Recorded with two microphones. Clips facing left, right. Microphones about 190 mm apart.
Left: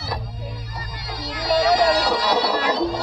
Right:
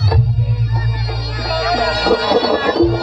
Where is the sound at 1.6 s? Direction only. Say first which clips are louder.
Right 1 dB; 60° right (ahead or behind).